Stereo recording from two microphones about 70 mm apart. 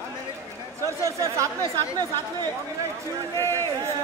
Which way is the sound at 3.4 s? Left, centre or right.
Left.